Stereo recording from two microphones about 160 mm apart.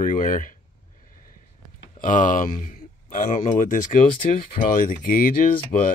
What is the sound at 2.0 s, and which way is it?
Speech, 55° left (ahead or behind).